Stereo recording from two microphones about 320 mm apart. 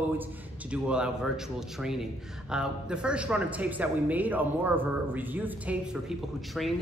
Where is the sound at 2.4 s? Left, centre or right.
Centre.